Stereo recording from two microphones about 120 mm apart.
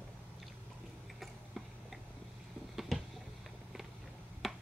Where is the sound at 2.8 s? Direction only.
Centre (ahead or behind).